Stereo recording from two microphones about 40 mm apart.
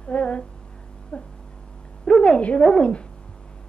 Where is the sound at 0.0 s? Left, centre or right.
Left.